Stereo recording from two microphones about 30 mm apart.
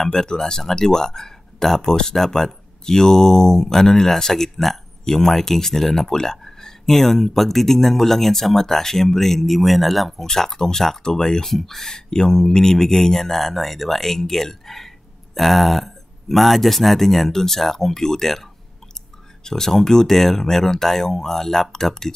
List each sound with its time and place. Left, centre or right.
0.1 s speech: left; by 10.2 s centre
10.2 s speech: centre
11.5 s speech: centre